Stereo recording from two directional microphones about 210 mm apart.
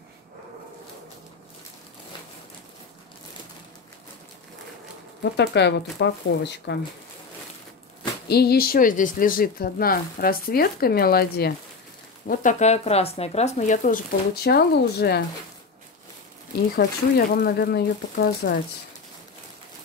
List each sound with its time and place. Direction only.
5.2 s speech: 55° left (ahead or behind)
8.3 s speech: 50° left (ahead or behind)
12.3 s speech: 35° left (ahead or behind)
16.7 s speech: 45° left (ahead or behind)